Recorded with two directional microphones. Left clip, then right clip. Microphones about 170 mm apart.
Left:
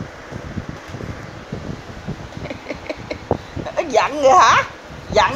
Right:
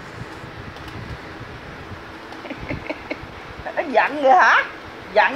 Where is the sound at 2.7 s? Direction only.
25° left (ahead or behind).